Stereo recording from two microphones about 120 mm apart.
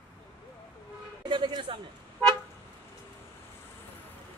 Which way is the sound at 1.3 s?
40° right (ahead or behind).